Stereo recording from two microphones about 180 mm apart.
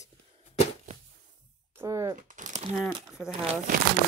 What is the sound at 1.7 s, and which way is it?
Speech, 15° right (ahead or behind).